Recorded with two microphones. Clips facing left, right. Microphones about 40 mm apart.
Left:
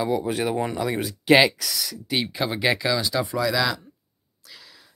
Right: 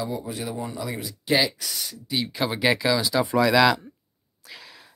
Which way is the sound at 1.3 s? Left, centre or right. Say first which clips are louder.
Left 6 dB; left.